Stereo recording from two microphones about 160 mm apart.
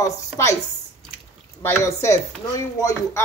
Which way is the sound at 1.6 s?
15° left (ahead or behind).